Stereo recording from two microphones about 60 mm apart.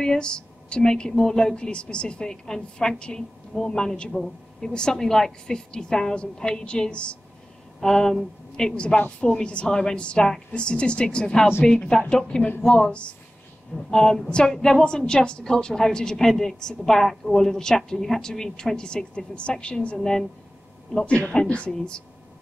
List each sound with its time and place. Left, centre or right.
0.0 s a woman's voice: centre
7.8 s a woman's voice: centre